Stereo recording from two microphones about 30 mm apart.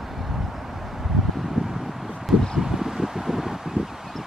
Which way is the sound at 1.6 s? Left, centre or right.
Right.